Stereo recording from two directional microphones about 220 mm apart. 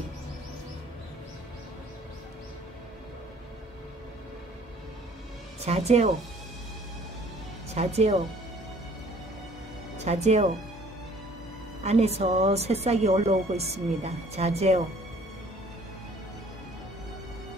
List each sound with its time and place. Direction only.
5.7 s speech: 30° right (ahead or behind)
7.7 s speech: 30° right (ahead or behind)
10.0 s speech: 30° right (ahead or behind)
11.8 s speech: 30° right (ahead or behind)